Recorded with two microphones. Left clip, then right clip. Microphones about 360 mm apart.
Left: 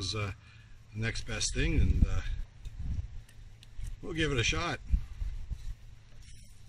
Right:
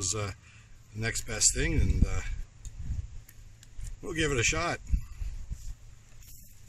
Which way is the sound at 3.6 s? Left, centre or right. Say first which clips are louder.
Right 3 dB; centre.